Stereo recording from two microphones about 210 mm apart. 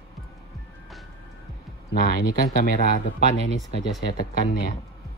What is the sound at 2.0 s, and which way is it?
Speech, 45° left (ahead or behind).